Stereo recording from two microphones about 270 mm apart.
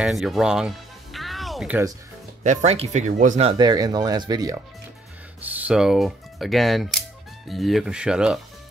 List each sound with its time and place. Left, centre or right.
0.0 s music: centre
2.4 s speech: right; by 8.4 s centre